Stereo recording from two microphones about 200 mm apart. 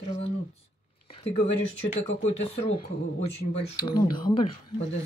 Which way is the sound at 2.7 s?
30° left (ahead or behind).